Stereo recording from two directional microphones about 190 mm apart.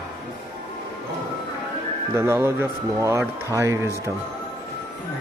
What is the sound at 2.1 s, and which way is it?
Speech, 15° right (ahead or behind).